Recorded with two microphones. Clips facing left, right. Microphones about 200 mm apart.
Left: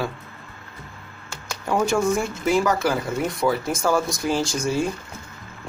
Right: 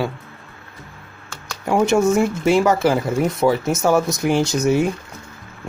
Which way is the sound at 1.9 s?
25° right (ahead or behind).